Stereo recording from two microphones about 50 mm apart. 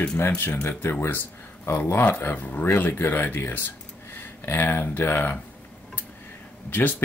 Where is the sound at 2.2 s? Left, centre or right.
Left.